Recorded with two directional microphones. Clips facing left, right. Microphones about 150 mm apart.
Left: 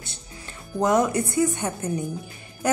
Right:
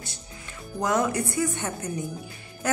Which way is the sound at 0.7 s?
20° left (ahead or behind).